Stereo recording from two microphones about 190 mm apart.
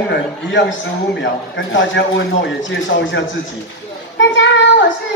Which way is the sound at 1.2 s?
75° left (ahead or behind).